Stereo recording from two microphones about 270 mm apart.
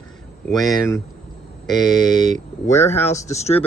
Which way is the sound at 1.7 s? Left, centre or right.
Centre.